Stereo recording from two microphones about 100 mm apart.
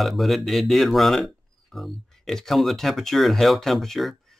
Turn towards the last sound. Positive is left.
turn(degrees=5)  # may be behind; listen again after turning